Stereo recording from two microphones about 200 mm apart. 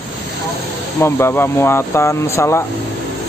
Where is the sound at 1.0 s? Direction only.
10° left (ahead or behind).